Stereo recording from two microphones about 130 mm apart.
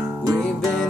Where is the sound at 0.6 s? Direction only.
Centre (ahead or behind).